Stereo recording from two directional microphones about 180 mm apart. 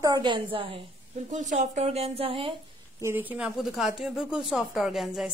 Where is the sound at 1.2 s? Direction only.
40° right (ahead or behind).